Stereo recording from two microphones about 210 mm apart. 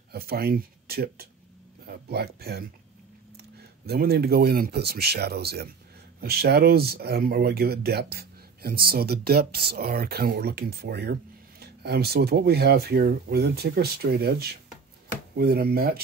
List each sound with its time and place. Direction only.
0.1 s speech: 45° right (ahead or behind)
3.8 s speech: 50° right (ahead or behind)